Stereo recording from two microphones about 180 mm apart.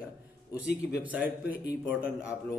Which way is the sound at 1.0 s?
10° right (ahead or behind).